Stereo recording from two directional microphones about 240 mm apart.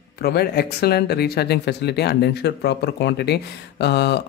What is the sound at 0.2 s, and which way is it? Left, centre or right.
Speech, left.